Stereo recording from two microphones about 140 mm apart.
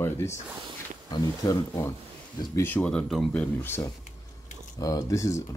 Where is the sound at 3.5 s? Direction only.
15° left (ahead or behind).